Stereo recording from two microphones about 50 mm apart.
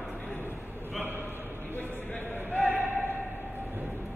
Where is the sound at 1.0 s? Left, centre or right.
Right.